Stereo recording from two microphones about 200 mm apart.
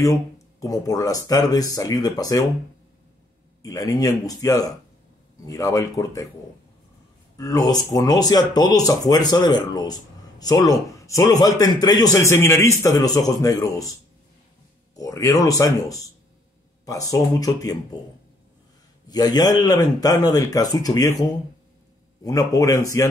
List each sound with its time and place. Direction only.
0.0 s speech: 15° left (ahead or behind)
3.6 s speech: 20° left (ahead or behind)
7.3 s speech: 15° left (ahead or behind)
15.0 s speech: 15° left (ahead or behind)
19.0 s speech: 20° left (ahead or behind)